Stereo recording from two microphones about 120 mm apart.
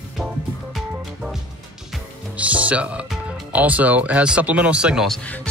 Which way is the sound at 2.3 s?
10° right (ahead or behind).